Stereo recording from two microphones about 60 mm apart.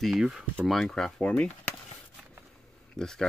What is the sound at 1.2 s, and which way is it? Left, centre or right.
Speech, centre.